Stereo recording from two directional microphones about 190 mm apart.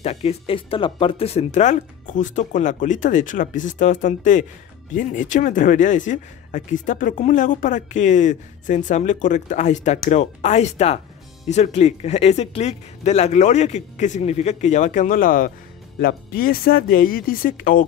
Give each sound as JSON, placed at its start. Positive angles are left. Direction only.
{"t": 0.0, "sound": "speech", "side_deg": 35}